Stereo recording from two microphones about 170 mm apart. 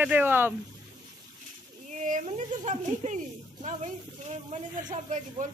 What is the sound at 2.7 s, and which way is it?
Speech, 45° right (ahead or behind).